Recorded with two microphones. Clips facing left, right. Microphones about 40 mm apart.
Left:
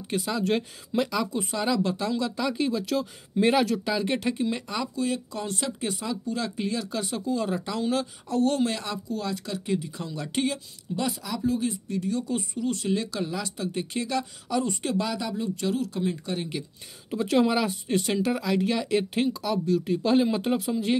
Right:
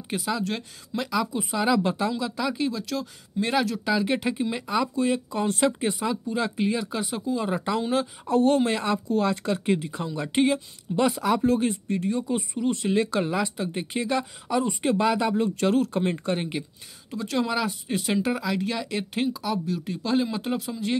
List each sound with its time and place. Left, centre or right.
0.1 s speech: centre
1.8 s speech: right
2.0 s speech: centre
4.9 s speech: right
8.3 s speech: right
10.0 s speech: right
11.0 s speech: right
12.1 s speech: right
16.3 s speech: right
17.1 s speech: centre